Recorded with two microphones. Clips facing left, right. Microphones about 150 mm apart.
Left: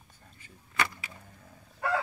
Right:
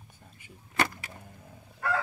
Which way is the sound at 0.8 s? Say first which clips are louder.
Right 3 dB; 45° right (ahead or behind).